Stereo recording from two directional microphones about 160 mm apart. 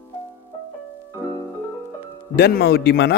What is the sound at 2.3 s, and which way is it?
Speech, 85° left.